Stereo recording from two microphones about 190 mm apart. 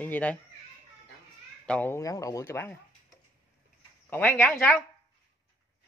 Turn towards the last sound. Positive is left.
turn(degrees=5)  # may be behind; listen again after turning